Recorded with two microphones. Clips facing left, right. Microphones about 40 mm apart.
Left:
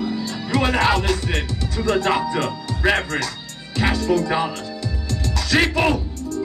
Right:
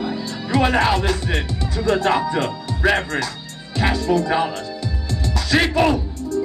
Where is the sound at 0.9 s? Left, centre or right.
Centre.